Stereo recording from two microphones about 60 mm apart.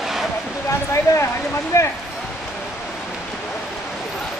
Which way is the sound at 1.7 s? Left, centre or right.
Left.